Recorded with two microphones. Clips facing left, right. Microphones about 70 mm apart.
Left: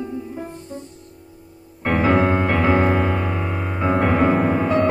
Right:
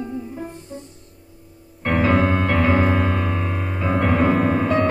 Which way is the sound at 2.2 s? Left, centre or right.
Left.